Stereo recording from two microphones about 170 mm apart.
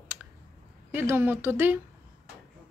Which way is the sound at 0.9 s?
15° right (ahead or behind).